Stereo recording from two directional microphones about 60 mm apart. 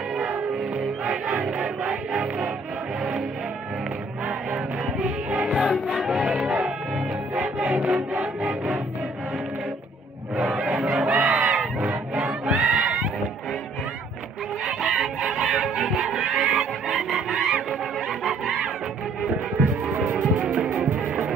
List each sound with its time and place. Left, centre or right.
0.3 s music: right; by 3.3 s centre
4.5 s music: centre
7.5 s a sound: centre
8.1 s music: centre
10.6 s crowd: centre
11.1 s battle cry: right
11.3 s battle cry: centre
14.6 s music: centre
20.3 s music: centre